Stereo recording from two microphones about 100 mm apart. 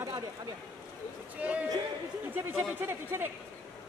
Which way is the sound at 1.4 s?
15° right (ahead or behind).